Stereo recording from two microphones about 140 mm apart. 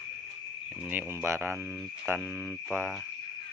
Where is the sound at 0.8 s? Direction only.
15° right (ahead or behind).